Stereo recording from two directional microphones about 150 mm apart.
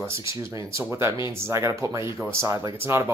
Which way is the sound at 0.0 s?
20° right (ahead or behind).